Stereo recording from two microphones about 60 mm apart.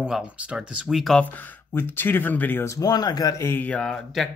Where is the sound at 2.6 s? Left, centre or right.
Left.